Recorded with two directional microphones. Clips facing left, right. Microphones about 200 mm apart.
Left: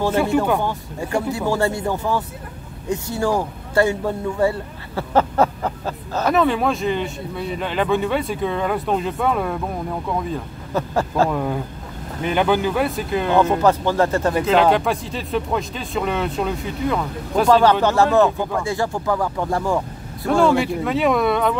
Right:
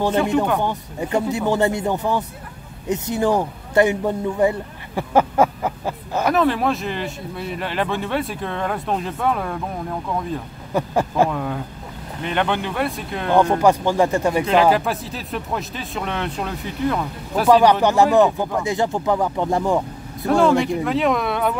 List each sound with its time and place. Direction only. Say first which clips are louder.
0.1 s speech: even; 10° left (ahead or behind)
0.6 s a man's voice: right 1 dB; 20° right (ahead or behind)
6.3 s speech: left 1 dB; centre (ahead or behind)
10.7 s speech: right 1 dB; 15° right (ahead or behind)
11.2 s speech: left 2 dB; 5° left (ahead or behind)
13.6 s a man's voice: right 1 dB; 15° right (ahead or behind)
14.4 s speech: left 1 dB; centre (ahead or behind); by 19.8 s 20° right (ahead or behind)
20.2 s speech: even; centre (ahead or behind)